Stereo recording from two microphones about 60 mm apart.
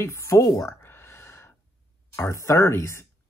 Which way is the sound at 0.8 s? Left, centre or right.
Left.